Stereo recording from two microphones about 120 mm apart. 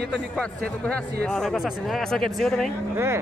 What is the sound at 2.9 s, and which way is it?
Speech, 20° right (ahead or behind).